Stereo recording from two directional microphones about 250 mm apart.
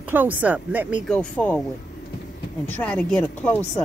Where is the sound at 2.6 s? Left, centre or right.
Centre.